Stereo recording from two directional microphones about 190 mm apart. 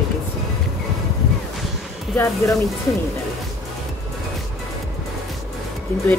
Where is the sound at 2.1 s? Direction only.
15° left (ahead or behind).